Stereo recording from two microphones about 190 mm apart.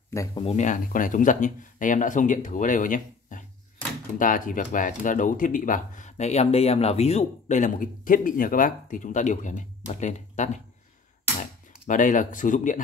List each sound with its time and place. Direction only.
0.1 s speech: 15° left (ahead or behind)
0.4 s speech: 35° left (ahead or behind)
11.9 s speech: 40° left (ahead or behind)